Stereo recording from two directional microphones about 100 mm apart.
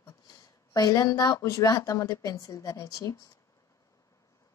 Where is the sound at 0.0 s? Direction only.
40° left (ahead or behind).